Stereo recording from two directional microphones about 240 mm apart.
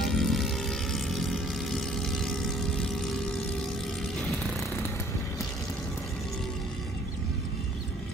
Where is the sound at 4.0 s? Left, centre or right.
Centre.